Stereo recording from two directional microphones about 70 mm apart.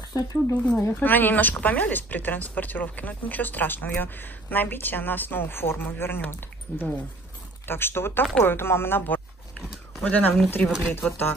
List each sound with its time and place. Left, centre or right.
0.1 s speech: left
0.9 s speech: left
6.7 s speech: left